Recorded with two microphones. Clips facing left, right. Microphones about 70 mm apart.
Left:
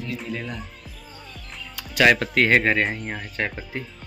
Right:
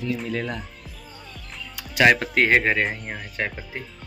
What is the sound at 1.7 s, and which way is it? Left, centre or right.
Speech, centre.